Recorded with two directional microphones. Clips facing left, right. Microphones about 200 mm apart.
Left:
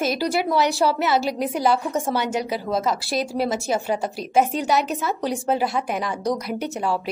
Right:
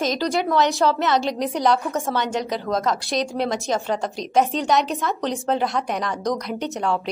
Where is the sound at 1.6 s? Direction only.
5° left (ahead or behind).